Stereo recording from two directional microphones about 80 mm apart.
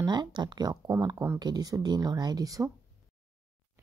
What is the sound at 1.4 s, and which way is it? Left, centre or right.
Speech, right.